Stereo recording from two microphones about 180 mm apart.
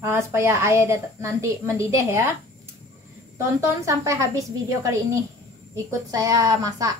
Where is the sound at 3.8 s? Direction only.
15° right (ahead or behind).